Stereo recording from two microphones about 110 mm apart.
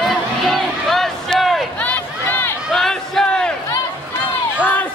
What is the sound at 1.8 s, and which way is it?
Run, 15° left (ahead or behind).